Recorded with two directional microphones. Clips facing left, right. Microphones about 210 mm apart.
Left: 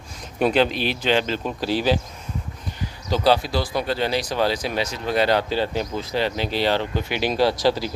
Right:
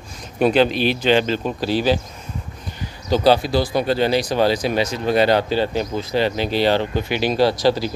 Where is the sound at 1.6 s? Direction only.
15° left (ahead or behind).